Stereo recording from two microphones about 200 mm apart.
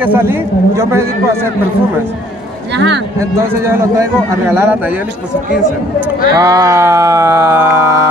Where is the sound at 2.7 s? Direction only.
60° right (ahead or behind).